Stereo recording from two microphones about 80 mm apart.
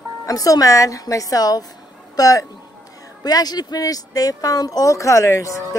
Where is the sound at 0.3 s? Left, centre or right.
Left.